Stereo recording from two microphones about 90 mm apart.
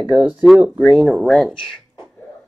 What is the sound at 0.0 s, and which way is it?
Speech, 15° right (ahead or behind).